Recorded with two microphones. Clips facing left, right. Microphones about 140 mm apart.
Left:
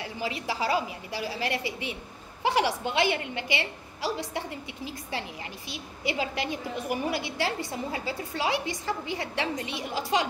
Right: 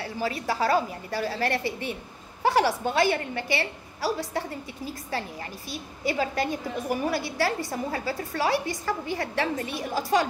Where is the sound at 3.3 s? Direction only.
15° left (ahead or behind).